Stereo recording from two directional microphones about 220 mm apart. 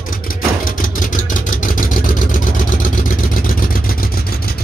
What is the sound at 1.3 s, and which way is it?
Vehicle, 40° left (ahead or behind).